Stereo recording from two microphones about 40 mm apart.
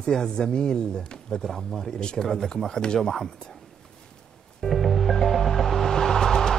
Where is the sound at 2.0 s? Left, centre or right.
Centre.